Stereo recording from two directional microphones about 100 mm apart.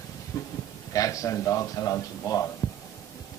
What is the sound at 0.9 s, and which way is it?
A man's voice, 35° left (ahead or behind).